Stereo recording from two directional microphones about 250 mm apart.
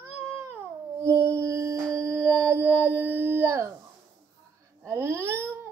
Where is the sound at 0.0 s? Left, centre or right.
Centre.